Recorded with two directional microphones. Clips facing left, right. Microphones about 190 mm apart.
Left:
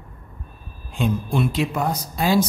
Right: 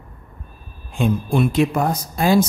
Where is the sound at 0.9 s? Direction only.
50° right (ahead or behind).